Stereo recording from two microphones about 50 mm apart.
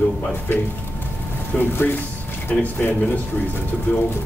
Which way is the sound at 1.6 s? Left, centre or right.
Left.